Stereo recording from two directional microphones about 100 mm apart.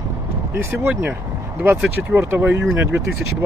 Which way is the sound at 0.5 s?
20° right (ahead or behind).